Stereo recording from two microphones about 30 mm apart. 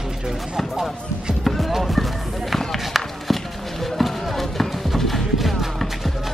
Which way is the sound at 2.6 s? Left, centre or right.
Centre.